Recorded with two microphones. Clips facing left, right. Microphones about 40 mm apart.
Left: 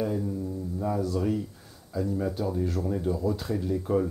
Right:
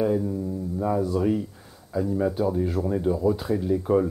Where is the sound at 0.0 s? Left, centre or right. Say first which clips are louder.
Right 5 dB; centre.